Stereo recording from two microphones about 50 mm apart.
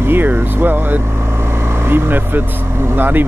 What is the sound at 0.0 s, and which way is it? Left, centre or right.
Speech, right.